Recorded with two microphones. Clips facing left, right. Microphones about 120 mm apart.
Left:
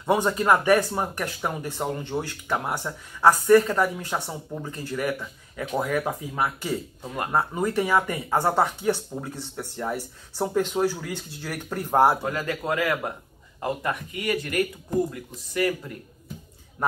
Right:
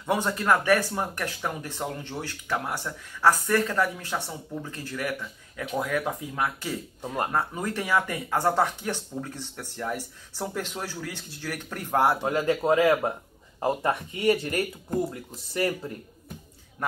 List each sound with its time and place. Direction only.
0.0 s speech: 15° left (ahead or behind)
12.2 s speech: 25° right (ahead or behind)